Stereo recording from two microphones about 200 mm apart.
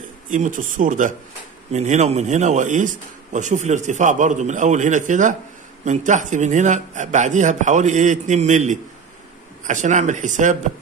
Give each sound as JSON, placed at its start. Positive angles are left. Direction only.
{"t": 0.3, "sound": "a man's voice", "side_deg": -40}